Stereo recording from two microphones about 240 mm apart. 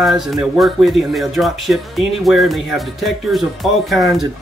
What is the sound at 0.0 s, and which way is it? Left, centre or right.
Speech, centre.